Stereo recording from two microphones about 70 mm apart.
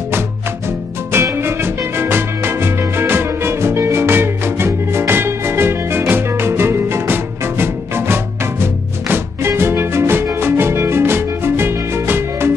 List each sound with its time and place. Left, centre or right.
1.1 s music: right